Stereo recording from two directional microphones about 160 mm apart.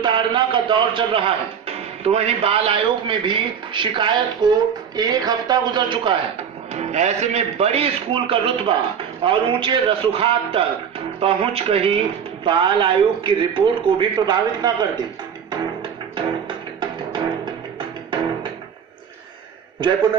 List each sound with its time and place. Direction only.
0.0 s a man's voice: 30° right (ahead or behind)
6.7 s speech: 45° right (ahead or behind)
15.5 s music: 30° right (ahead or behind)
19.8 s a man's voice: 30° right (ahead or behind)